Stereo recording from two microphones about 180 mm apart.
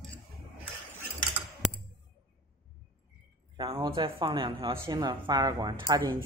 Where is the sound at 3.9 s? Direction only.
30° right (ahead or behind).